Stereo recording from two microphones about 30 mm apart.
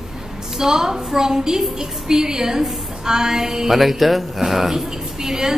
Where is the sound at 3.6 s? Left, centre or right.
Centre.